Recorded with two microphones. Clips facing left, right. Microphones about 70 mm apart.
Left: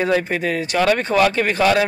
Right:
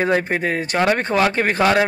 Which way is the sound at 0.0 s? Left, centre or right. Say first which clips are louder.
Even; right.